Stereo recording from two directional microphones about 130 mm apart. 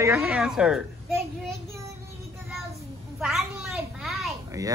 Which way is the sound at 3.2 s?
Centre (ahead or behind).